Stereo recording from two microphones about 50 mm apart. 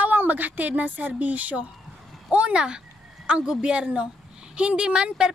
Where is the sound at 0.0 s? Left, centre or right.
Right.